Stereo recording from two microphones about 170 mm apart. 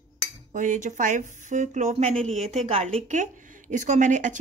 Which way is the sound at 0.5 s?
45° right (ahead or behind).